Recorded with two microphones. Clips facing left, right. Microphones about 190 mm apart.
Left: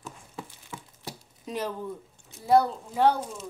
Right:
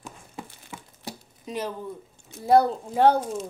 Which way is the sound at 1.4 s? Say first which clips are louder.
Right 1 dB; 5° right (ahead or behind).